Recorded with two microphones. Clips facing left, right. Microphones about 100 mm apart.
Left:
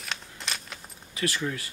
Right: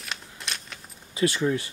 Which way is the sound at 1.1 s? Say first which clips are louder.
Right 6 dB; 25° right (ahead or behind).